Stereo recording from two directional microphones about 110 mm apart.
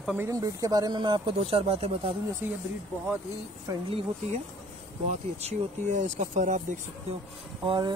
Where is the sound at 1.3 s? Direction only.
65° right (ahead or behind).